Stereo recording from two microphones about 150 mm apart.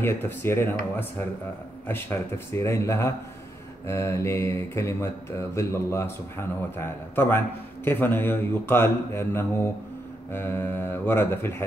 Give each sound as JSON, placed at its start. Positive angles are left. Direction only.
{"t": 0.0, "sound": "speech", "side_deg": 15}
{"t": 1.9, "sound": "speech", "side_deg": 15}